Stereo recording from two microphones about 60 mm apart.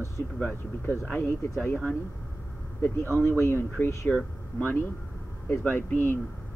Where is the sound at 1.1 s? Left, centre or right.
Left.